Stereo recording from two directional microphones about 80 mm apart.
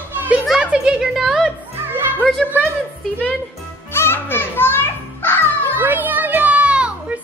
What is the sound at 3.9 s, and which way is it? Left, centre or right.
Children playing, left.